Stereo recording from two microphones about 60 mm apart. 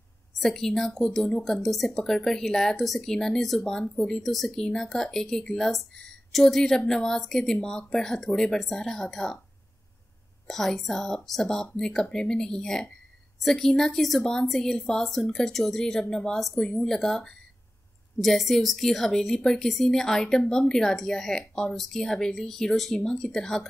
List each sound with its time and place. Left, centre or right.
0.4 s speech: centre
4.2 s speech: centre
10.4 s a woman's voice: centre